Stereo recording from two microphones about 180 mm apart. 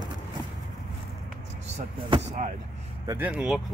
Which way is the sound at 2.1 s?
35° right (ahead or behind).